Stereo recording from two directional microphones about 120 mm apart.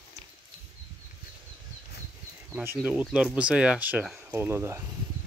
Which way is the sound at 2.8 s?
10° right (ahead or behind).